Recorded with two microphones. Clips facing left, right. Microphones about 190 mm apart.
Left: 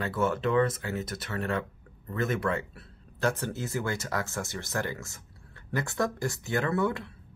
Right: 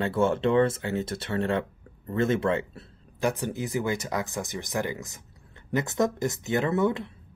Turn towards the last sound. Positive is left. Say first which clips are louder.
# right 3 dB
turn(degrees=-20)  # may be behind; listen again after turning